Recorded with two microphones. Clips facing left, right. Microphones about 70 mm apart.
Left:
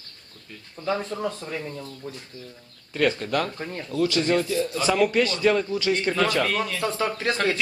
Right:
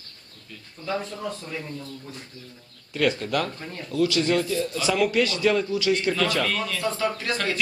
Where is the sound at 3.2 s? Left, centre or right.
Centre.